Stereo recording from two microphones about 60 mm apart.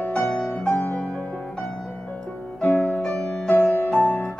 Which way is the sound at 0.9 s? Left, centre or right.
Centre.